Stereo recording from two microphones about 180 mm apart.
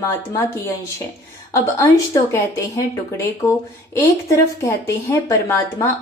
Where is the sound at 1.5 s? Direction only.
15° left (ahead or behind).